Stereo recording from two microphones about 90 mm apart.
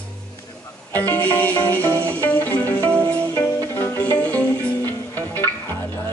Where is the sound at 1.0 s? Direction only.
20° left (ahead or behind).